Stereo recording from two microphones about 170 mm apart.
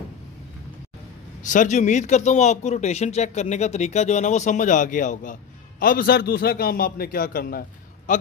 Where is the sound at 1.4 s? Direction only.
50° left (ahead or behind).